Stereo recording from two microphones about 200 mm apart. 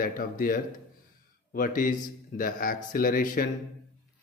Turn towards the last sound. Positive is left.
turn(degrees=45)  # may be behind; listen again after turning